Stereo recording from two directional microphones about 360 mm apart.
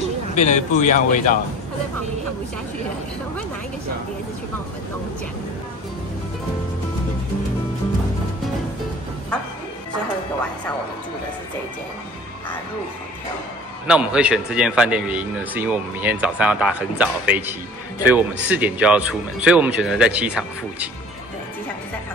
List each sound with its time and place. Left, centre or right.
0.4 s speech: centre
13.8 s speech: centre